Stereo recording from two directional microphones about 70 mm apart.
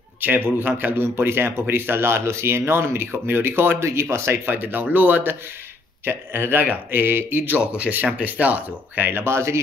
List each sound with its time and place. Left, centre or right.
0.2 s speech: right
4.5 s speech: right